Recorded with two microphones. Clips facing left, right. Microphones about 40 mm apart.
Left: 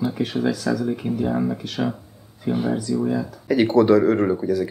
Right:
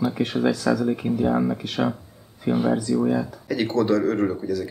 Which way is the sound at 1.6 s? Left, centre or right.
Centre.